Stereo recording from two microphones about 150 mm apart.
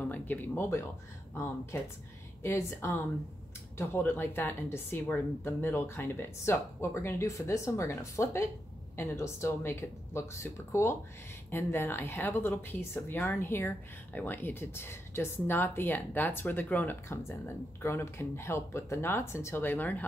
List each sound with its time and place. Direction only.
0.0 s speech: 10° left (ahead or behind)